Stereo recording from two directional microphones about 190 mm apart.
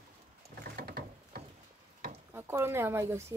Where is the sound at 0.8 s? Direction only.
55° right (ahead or behind).